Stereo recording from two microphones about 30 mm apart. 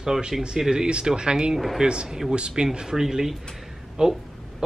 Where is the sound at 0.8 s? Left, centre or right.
Right.